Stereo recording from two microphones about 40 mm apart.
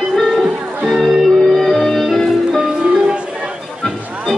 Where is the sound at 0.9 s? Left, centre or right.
Centre.